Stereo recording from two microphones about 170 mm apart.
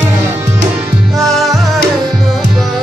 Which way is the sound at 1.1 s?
Centre (ahead or behind).